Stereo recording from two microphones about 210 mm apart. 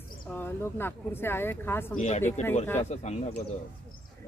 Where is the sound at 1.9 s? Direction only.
35° left (ahead or behind).